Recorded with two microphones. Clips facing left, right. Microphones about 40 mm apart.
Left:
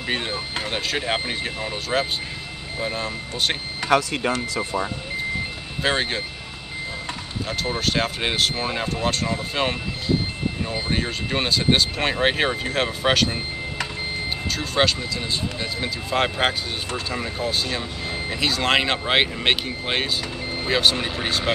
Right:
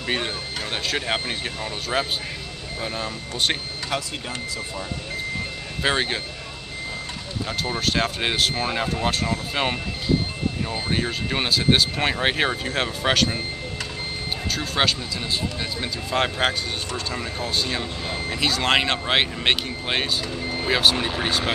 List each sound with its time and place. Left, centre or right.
0.7 s speech: centre
3.9 s speech: left
5.8 s speech: centre
7.4 s speech: centre
14.5 s speech: centre